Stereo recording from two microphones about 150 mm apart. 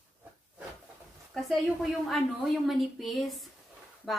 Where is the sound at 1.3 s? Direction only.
Centre (ahead or behind).